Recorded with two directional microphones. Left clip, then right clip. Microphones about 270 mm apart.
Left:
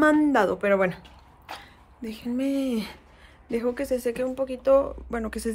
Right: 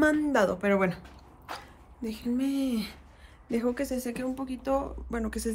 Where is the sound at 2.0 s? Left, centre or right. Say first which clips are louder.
Left 2 dB; centre.